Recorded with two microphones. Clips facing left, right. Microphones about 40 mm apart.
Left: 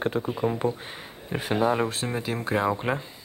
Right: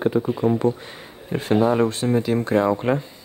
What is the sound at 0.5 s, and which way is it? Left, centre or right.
Speech, left.